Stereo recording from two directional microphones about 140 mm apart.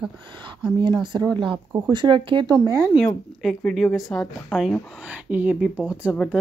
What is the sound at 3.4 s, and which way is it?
A woman's voice, centre (ahead or behind).